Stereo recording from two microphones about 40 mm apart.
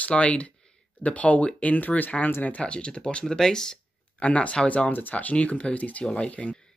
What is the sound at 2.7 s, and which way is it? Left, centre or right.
Speech, left.